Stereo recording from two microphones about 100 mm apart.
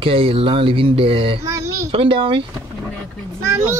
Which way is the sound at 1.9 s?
65° right (ahead or behind).